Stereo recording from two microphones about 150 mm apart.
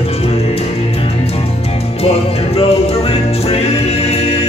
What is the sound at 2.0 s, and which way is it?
Music, 40° left (ahead or behind).